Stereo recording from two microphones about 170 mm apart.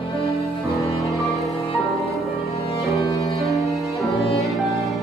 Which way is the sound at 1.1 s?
Centre (ahead or behind).